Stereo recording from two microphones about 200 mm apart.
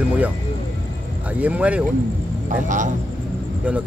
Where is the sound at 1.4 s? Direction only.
5° right (ahead or behind).